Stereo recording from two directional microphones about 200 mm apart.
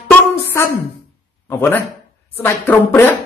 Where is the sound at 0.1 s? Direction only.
10° left (ahead or behind).